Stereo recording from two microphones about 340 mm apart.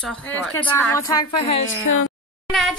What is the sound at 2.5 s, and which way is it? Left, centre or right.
Speech, centre.